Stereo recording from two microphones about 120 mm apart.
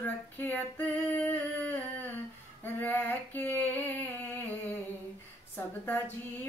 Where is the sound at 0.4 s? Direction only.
15° left (ahead or behind).